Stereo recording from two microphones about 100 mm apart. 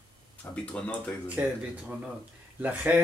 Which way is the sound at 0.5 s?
10° left (ahead or behind).